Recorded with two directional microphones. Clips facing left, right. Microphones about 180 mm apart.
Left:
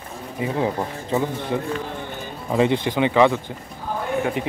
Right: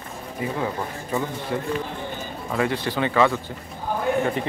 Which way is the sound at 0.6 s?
20° left (ahead or behind).